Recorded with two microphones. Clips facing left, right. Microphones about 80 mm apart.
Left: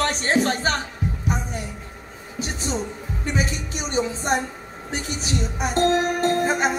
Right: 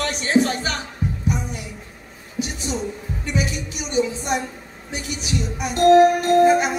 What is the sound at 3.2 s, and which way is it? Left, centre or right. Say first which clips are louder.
Music: even; left.